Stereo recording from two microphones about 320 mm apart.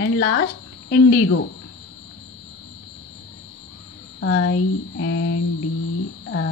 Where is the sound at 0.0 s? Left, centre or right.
Left.